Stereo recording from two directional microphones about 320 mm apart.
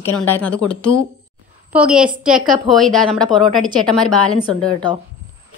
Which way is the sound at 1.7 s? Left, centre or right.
Centre.